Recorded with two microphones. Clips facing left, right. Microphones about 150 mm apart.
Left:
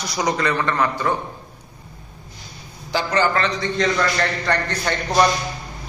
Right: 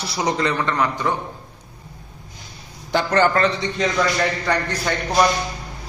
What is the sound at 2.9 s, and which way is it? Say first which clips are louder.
Speech: right 2 dB; 55° right (ahead or behind).